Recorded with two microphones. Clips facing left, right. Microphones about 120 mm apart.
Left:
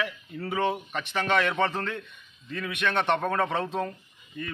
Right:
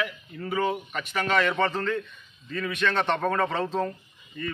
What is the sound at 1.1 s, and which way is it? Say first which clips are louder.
A man's voice: right 1 dB; 20° left (ahead or behind).